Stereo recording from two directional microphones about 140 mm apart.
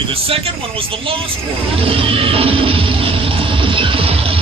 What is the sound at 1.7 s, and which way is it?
Music, 40° right (ahead or behind).